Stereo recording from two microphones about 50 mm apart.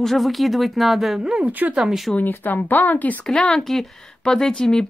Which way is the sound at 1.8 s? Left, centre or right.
Centre.